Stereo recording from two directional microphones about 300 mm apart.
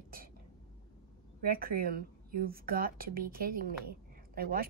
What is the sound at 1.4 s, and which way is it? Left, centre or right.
A woman's voice, right.